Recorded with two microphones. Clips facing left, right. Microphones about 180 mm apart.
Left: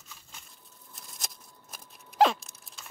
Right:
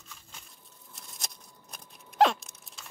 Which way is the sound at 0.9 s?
Centre (ahead or behind).